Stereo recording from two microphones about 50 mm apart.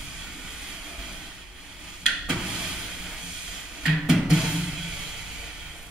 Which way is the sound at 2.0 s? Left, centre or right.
Centre.